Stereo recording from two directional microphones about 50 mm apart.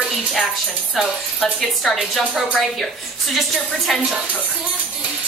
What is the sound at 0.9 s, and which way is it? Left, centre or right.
A woman's voice, centre.